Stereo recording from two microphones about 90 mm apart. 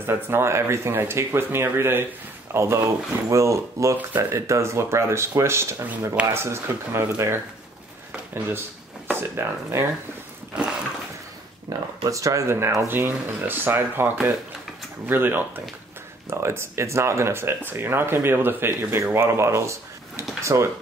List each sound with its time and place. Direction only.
0.0 s speech: 25° right (ahead or behind)
9.0 s speech: 25° right (ahead or behind)
12.0 s speech: 35° right (ahead or behind)